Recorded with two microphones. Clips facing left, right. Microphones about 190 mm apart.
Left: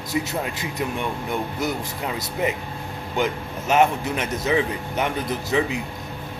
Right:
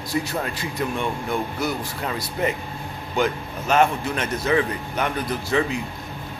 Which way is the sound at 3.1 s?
20° left (ahead or behind).